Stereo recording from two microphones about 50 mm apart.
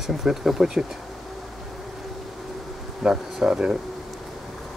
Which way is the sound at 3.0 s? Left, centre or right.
Centre.